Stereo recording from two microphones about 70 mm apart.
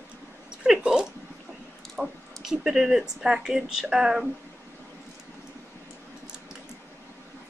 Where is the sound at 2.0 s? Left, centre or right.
Centre.